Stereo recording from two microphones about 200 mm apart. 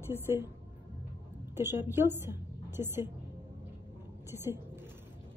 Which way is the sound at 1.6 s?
10° right (ahead or behind).